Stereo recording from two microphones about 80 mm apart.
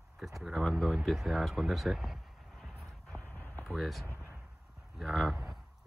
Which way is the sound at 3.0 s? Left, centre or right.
Centre.